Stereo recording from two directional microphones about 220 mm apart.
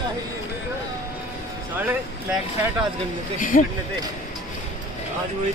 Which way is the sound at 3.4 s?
40° left (ahead or behind).